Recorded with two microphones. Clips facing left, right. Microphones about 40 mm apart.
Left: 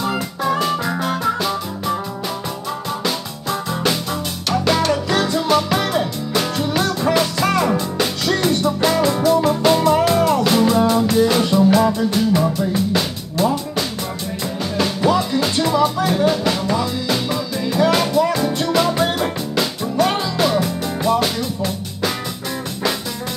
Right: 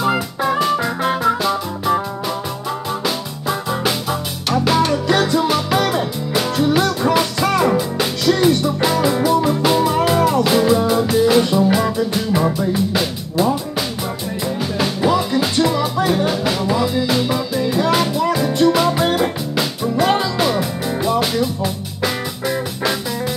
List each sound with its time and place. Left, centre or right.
0.1 s music: centre
0.6 s music: centre